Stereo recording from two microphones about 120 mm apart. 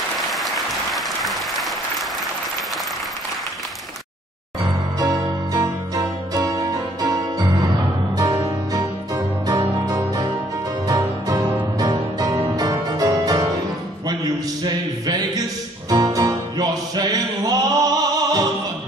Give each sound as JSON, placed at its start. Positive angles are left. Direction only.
{"t": 0.9, "sound": "applause", "side_deg": 0}
{"t": 4.6, "sound": "music", "side_deg": -30}